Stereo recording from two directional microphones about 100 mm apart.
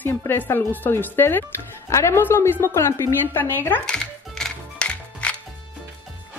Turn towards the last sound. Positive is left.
turn(degrees=10)  # may be behind; listen again after turning